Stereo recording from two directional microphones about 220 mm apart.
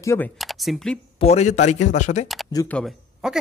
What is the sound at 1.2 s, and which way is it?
Speech, 30° left (ahead or behind).